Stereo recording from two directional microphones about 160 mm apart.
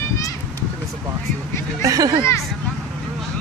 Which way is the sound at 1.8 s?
20° right (ahead or behind).